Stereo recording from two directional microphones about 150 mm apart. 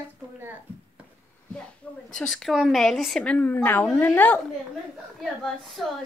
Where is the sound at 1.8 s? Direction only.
10° left (ahead or behind).